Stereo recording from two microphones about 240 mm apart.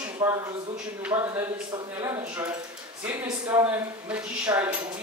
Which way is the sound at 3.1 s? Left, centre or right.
Centre.